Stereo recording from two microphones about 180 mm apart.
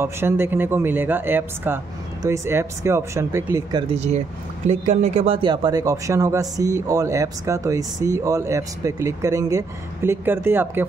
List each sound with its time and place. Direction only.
0.0 s speech: 15° right (ahead or behind)
3.9 s speech: 40° right (ahead or behind); by 10.9 s 10° right (ahead or behind)